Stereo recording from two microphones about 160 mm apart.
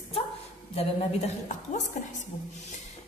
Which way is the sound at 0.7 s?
45° left (ahead or behind).